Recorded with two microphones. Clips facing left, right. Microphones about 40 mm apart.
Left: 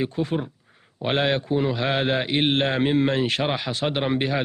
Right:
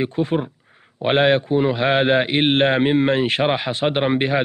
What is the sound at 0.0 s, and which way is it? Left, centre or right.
A man's voice, right.